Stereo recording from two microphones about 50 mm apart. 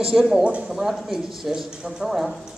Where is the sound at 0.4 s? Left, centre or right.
Right.